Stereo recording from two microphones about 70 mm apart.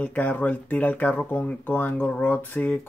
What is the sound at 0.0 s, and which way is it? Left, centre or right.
Speech, left.